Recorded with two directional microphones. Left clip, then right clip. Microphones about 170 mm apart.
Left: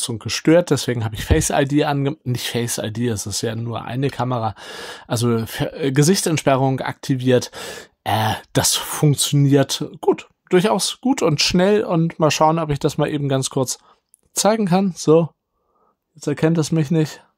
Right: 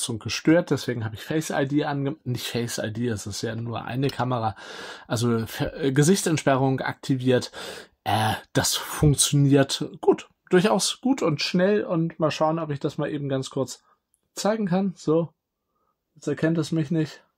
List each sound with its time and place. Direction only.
0.0 s speech: 30° left (ahead or behind)
11.1 s speech: 50° left (ahead or behind)